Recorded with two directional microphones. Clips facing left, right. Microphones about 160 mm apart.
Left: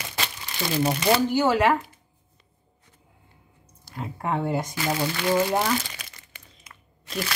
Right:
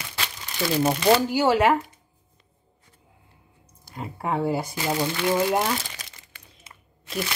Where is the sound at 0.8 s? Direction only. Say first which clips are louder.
Right 2 dB; 10° right (ahead or behind).